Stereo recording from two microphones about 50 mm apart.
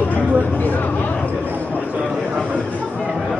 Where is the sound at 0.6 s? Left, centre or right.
Left.